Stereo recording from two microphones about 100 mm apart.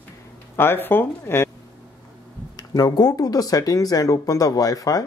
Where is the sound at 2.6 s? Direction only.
40° left (ahead or behind).